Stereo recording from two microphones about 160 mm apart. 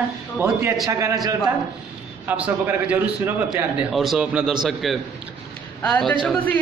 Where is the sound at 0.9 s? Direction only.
20° right (ahead or behind).